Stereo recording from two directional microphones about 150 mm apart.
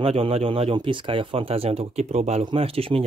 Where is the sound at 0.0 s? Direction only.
40° right (ahead or behind).